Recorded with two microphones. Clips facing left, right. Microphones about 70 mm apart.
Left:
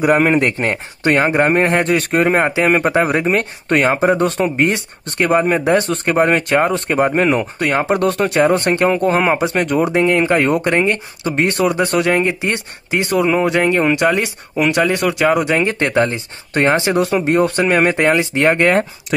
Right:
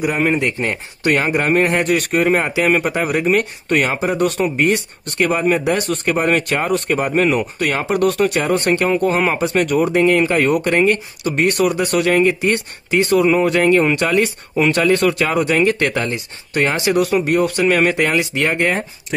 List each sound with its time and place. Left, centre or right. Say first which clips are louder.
0.0 s a man's voice: left 4 dB; left
18.6 s speech: left 5 dB; left